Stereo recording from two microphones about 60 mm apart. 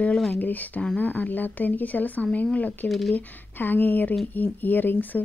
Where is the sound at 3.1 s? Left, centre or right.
Left.